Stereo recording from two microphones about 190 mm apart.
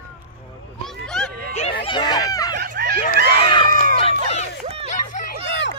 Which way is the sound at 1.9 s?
25° left (ahead or behind).